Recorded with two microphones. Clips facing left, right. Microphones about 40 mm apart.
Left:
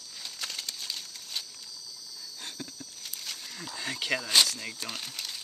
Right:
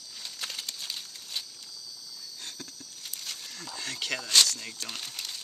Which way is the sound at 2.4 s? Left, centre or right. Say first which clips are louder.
Left 4 dB; centre.